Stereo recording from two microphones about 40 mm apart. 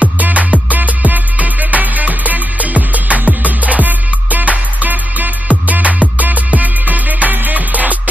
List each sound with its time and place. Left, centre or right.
0.0 s music: right